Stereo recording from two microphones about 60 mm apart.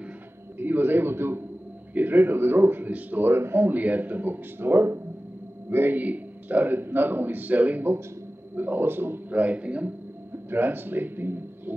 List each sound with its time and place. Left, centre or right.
0.6 s a man's voice: right
10.3 s a man's voice: right